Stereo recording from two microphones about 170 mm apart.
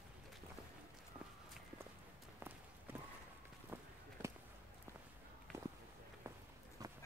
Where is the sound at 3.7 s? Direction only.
10° right (ahead or behind).